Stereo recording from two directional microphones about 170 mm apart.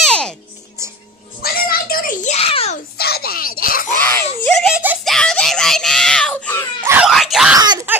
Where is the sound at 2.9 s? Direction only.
65° left (ahead or behind).